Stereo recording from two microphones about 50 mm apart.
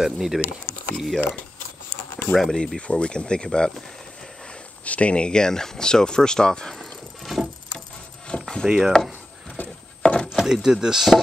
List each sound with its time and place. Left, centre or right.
0.0 s speech: centre
0.9 s speech: centre
2.5 s speech: centre
4.8 s speech: left
6.8 s a sound: centre
8.3 s a sound: centre
8.6 s speech: centre
9.6 s a sound: left
10.0 s chopping: centre
10.3 s wood: centre